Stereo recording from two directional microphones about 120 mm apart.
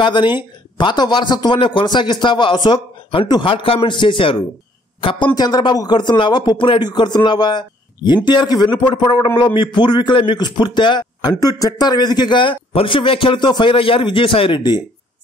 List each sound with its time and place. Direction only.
0.0 s a man's voice: 40° left (ahead or behind)
5.3 s a man's voice: 35° left (ahead or behind)